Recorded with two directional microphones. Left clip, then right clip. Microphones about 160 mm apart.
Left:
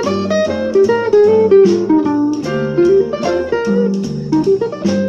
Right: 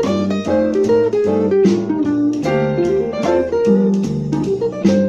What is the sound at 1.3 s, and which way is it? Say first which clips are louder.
Music: left 6 dB; 50° right (ahead or behind).